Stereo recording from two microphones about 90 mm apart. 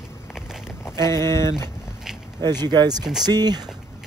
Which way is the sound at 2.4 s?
50° right (ahead or behind).